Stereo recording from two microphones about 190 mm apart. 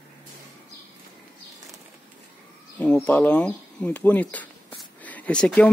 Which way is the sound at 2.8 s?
5° left (ahead or behind).